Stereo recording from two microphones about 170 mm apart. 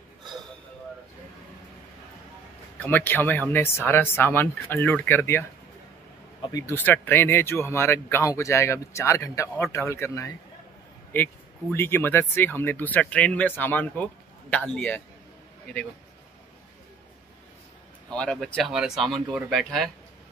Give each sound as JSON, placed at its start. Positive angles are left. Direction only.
{"t": 2.8, "sound": "speech", "side_deg": 10}
{"t": 6.5, "sound": "speech", "side_deg": 15}
{"t": 11.7, "sound": "speech", "side_deg": 15}
{"t": 18.1, "sound": "speech", "side_deg": 5}